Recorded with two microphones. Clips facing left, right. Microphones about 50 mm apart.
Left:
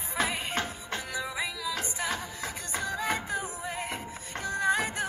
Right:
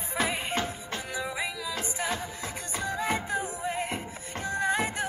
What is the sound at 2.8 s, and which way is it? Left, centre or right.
Music, right.